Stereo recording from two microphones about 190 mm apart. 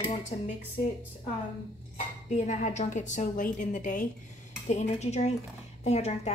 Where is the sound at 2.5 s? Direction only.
40° left (ahead or behind).